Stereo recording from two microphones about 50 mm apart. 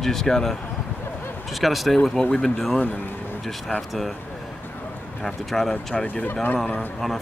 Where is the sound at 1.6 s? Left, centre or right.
Centre.